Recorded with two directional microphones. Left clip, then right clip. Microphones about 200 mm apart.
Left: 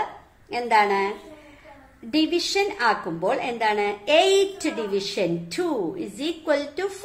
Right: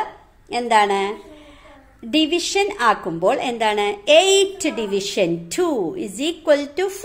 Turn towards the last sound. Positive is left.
turn(degrees=-45)  # may be behind; listen again after turning